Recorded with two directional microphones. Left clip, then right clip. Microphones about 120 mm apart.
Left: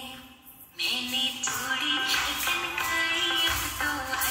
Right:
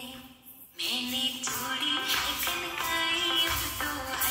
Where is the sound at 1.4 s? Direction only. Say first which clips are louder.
Left 3 dB; 20° right (ahead or behind).